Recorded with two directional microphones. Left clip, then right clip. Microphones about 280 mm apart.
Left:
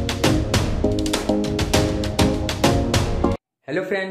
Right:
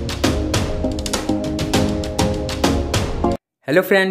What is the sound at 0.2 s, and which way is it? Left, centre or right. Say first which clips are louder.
Music: right 1 dB; centre.